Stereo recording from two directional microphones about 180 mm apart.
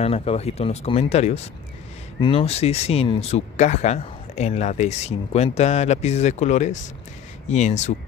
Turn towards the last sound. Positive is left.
turn(degrees=40)  # may be behind; listen again after turning